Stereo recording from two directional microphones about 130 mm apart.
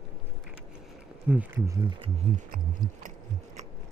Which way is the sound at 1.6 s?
30° right (ahead or behind).